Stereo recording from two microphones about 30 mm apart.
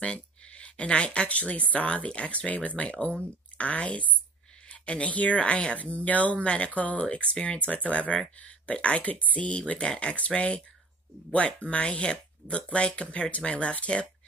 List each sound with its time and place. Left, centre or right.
0.0 s speech: left
2.0 s speech: left
5.4 s speech: left
5.8 s speech: left
7.4 s speech: left
7.8 s speech: left
11.8 s speech: left